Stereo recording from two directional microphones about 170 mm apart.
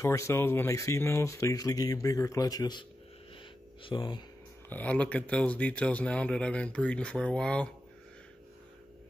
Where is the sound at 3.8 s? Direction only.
30° left (ahead or behind).